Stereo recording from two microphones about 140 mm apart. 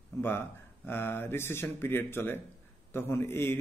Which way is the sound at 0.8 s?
15° left (ahead or behind).